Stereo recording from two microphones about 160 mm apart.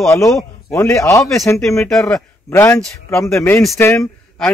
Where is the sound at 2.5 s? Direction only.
15° left (ahead or behind).